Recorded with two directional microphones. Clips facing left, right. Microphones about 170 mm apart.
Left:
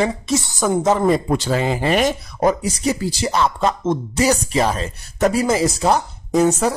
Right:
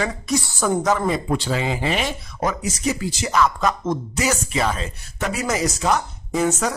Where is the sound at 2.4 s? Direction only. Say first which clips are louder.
Left 6 dB; 35° left (ahead or behind).